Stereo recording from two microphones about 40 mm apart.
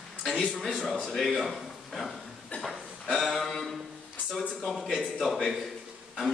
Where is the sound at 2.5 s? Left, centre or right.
Left.